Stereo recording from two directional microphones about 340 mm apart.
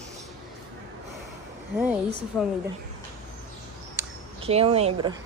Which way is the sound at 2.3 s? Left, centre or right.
Centre.